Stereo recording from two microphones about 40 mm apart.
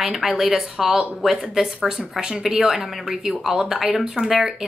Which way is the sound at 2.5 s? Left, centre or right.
Centre.